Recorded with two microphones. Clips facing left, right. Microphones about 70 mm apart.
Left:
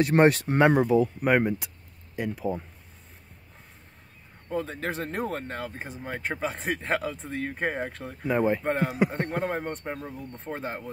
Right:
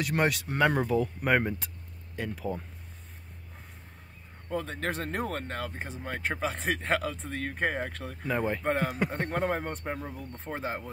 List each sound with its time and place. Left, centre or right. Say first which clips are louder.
0.0 s speech: left 8 dB; left
0.7 s speech: left 6 dB; centre
4.5 s speech: left 2 dB; centre